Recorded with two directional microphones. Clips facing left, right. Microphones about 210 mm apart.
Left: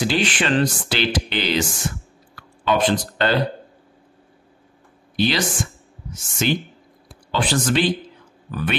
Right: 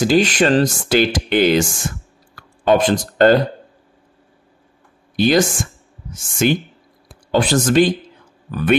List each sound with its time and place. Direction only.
0.0 s speech: 45° right (ahead or behind)
5.1 s speech: 45° right (ahead or behind)